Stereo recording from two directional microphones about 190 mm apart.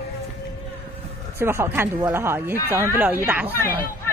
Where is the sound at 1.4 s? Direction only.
15° right (ahead or behind).